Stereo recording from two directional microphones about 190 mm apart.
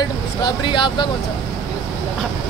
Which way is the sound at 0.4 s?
25° left (ahead or behind).